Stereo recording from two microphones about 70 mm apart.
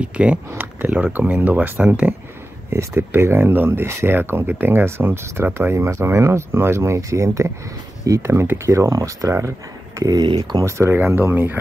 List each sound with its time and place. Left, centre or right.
0.0 s speech: centre
2.7 s speech: right
9.9 s speech: right
10.6 s speech: right